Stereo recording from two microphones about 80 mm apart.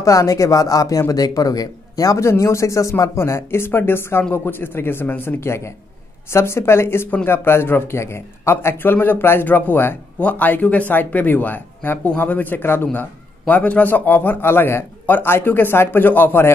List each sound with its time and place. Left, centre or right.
0.0 s a man's voice: left